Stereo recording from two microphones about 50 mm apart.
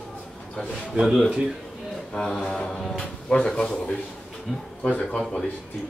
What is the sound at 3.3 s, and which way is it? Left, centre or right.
Speech, centre.